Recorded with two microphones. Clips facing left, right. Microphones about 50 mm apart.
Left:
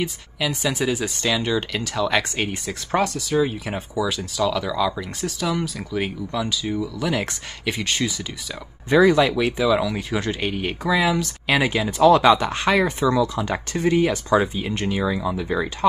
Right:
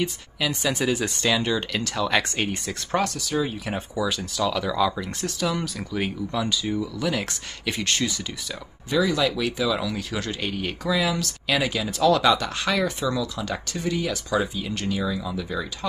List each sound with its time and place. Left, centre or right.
0.0 s speech: centre
9.1 s speech: left